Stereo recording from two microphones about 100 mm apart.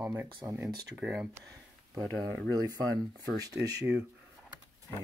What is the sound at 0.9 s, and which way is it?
Speech, 20° right (ahead or behind).